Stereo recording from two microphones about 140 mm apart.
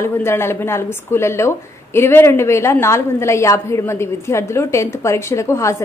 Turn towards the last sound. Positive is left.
turn(degrees=20)  # may be behind; listen again after turning